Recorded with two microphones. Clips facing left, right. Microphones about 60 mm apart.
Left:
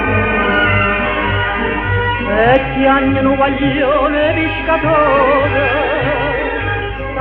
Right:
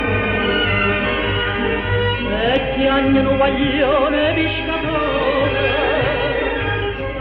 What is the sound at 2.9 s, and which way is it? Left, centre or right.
Music, centre.